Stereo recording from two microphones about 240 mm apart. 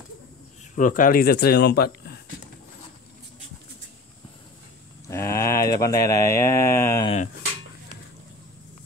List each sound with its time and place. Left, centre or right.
0.7 s speech: left
5.0 s a sound: centre
5.8 s speech: centre